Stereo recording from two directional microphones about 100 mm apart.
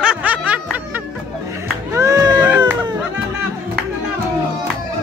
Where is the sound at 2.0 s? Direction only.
35° right (ahead or behind).